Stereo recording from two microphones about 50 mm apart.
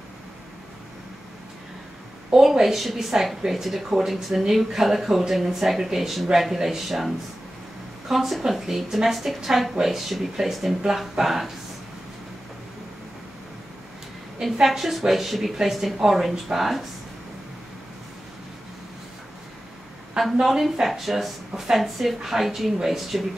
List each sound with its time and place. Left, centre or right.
2.3 s speech: centre
8.1 s speech: centre
14.4 s speech: centre
20.2 s speech: centre